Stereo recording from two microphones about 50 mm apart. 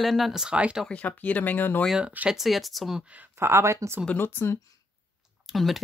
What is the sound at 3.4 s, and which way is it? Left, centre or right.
Speech, right.